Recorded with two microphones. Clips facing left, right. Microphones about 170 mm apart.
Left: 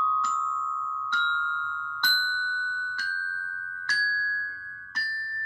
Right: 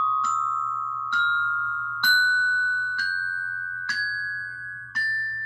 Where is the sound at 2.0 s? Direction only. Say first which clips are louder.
Right 7 dB; 15° left (ahead or behind).